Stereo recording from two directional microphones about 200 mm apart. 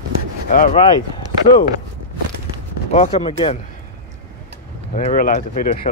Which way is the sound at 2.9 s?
30° left (ahead or behind).